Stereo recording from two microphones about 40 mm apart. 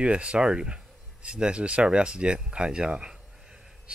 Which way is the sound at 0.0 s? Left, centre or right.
Right.